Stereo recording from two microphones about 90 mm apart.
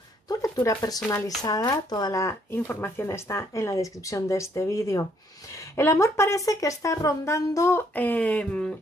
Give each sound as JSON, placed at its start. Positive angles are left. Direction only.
{"t": 0.3, "sound": "a sound", "side_deg": 40}
{"t": 1.2, "sound": "speech", "side_deg": 40}
{"t": 2.1, "sound": "speech", "side_deg": 35}